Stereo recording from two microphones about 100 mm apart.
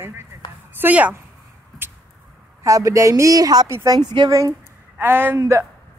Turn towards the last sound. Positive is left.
turn(degrees=-30)  # may be behind; listen again after turning